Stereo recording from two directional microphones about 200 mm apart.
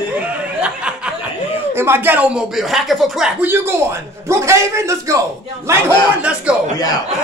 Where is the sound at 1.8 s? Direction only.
10° right (ahead or behind).